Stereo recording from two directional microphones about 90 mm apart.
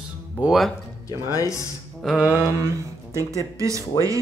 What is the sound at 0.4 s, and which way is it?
Speech, 5° right (ahead or behind).